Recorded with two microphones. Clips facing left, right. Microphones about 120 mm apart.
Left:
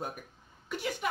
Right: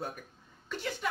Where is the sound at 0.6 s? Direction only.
15° left (ahead or behind).